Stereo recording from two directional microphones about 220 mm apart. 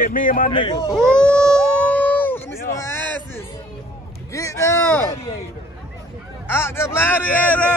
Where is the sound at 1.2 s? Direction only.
5° left (ahead or behind).